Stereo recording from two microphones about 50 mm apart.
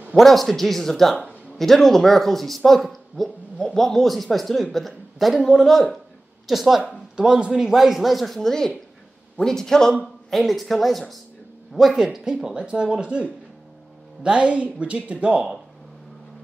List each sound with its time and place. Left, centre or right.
0.2 s speech: centre
6.9 s speech: centre